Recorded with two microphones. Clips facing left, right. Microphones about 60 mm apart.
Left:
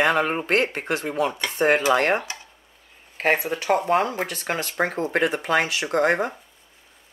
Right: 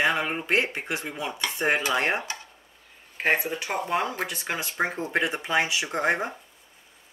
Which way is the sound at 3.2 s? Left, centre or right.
Left.